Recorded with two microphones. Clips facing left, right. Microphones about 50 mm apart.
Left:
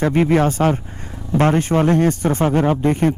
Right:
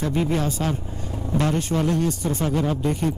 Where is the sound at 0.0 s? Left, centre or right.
Left.